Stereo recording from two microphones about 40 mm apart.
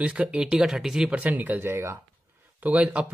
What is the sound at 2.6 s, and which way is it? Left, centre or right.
Speech, right.